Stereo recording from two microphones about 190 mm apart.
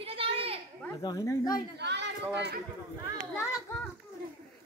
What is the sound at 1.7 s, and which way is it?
Speech, 65° right (ahead or behind).